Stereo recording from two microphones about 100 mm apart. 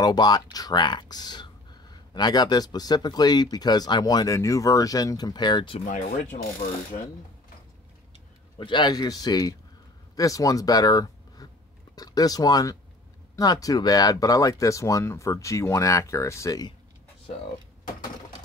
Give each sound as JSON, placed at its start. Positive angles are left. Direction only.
{"t": 0.0, "sound": "speech", "side_deg": 45}
{"t": 8.5, "sound": "speech", "side_deg": 55}